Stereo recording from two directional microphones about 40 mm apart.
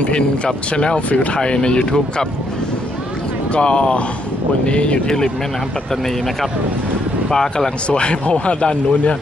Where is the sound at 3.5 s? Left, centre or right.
Left.